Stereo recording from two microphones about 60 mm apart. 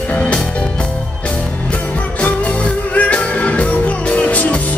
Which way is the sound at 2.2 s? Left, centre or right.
Left.